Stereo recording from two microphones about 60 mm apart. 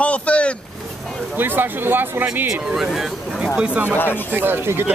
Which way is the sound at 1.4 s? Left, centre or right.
Right.